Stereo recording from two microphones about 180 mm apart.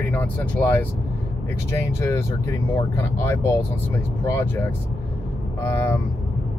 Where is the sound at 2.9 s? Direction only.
15° left (ahead or behind).